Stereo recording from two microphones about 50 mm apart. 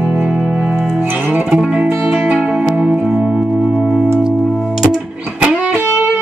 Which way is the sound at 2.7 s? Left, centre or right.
Right.